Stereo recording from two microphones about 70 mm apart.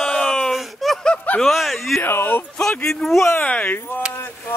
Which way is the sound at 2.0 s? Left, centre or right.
Left.